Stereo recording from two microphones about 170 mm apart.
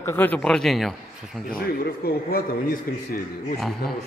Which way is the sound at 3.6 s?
Centre (ahead or behind).